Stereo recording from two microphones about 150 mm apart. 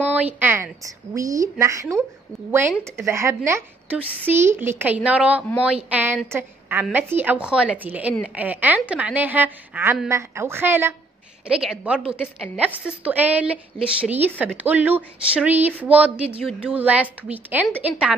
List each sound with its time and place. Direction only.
0.1 s a woman's voice: 10° right (ahead or behind)
3.0 s a woman's voice: 15° right (ahead or behind)